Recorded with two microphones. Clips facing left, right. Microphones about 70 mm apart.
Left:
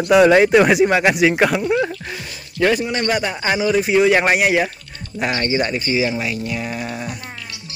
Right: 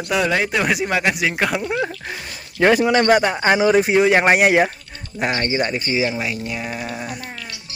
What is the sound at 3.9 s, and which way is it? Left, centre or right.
Speech, right.